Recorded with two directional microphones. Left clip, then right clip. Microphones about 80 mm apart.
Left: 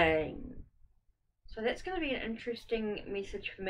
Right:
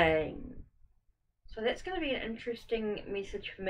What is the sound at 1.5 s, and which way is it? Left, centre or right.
A woman's voice, left.